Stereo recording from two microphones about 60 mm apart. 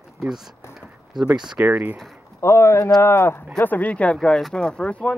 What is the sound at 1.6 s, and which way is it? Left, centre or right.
Speech, right.